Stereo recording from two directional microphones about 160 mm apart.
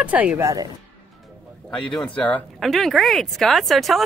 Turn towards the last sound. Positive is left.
turn(degrees=0)  # may be behind; listen again after turning